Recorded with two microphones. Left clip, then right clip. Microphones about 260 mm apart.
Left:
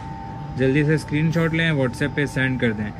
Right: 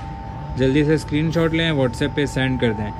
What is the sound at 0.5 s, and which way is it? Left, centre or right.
Speech, centre.